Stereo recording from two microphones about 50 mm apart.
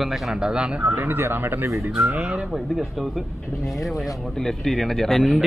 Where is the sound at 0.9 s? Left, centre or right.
Right.